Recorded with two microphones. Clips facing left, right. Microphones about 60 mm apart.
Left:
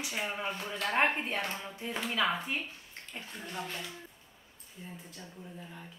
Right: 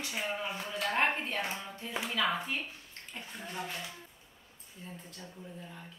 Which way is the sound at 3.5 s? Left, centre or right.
Centre.